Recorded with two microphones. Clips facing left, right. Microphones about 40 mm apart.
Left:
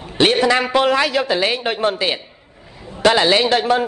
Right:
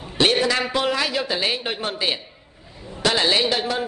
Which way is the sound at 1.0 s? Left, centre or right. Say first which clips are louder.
Left 6 dB; left.